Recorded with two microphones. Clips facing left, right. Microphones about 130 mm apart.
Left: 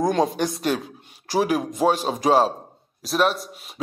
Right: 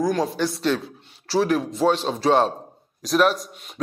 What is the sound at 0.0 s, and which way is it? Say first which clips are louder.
A man's voice: left 1 dB; 20° left (ahead or behind).